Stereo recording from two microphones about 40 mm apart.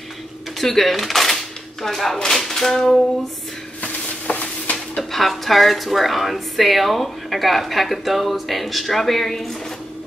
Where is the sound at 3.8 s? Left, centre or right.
Left.